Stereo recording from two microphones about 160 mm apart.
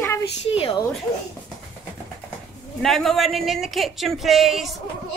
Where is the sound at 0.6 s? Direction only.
35° left (ahead or behind).